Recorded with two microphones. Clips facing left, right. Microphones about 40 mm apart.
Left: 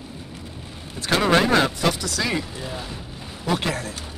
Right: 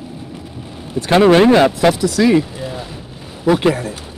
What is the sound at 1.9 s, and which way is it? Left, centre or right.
Speech, centre.